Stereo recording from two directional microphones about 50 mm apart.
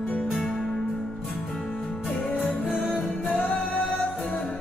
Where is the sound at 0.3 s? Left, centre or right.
Centre.